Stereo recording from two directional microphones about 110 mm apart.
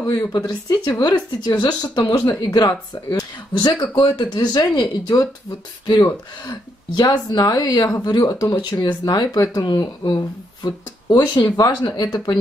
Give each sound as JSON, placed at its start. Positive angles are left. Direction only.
{"t": 0.1, "sound": "speech", "side_deg": 35}